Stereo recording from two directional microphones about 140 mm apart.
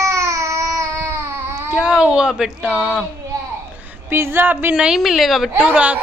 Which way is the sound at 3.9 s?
15° right (ahead or behind).